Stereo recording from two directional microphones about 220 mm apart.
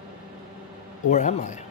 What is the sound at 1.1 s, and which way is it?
Speech, 35° left (ahead or behind).